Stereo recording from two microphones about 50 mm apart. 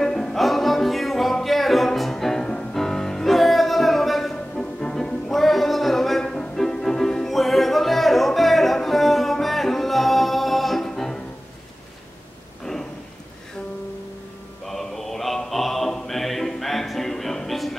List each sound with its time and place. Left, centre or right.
0.0 s music: centre
14.7 s music: centre